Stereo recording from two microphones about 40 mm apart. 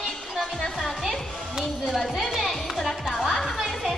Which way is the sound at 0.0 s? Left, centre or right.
Centre.